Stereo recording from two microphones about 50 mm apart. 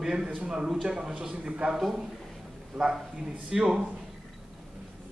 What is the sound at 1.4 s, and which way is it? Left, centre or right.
Speech, right.